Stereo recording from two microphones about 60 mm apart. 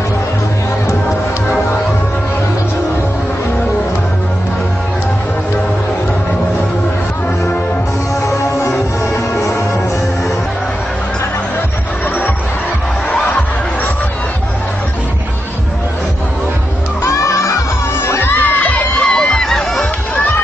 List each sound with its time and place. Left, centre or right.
8.3 s music: left
17.0 s music: left
18.0 s children shouting: left
18.4 s crowd: left
19.0 s music: centre